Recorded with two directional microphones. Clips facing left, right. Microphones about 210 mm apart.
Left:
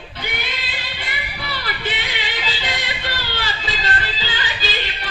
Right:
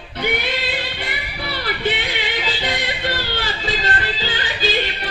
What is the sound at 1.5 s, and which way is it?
Music, 55° right (ahead or behind).